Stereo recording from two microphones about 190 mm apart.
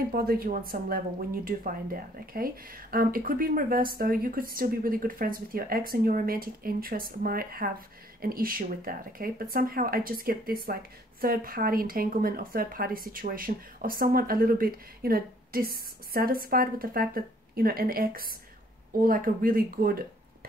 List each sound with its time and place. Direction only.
0.1 s speech: 50° right (ahead or behind)